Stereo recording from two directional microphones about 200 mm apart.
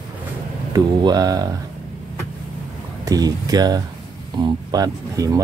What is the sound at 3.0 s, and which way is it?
Speech, 20° right (ahead or behind).